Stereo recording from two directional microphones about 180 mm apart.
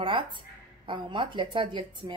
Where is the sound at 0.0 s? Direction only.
30° right (ahead or behind).